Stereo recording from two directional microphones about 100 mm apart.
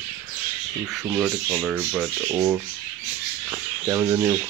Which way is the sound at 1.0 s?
10° right (ahead or behind).